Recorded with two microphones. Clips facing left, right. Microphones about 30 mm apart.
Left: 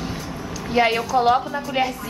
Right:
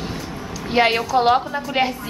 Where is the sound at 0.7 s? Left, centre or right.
Right.